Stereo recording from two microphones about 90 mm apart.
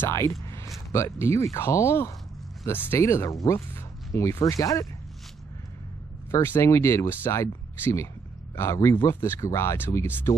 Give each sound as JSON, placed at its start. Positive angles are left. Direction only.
{"t": 0.0, "sound": "speech", "side_deg": 30}
{"t": 6.4, "sound": "speech", "side_deg": 30}